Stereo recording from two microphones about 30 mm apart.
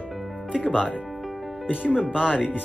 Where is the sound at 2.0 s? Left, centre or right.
Right.